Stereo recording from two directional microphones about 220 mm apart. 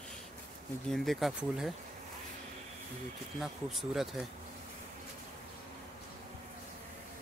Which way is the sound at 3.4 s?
Centre (ahead or behind).